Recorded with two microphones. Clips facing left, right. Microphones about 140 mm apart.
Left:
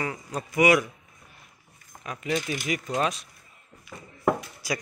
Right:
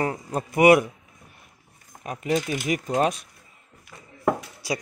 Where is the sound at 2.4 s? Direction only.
20° right (ahead or behind).